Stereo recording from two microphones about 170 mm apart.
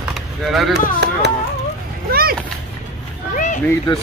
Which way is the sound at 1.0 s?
80° right.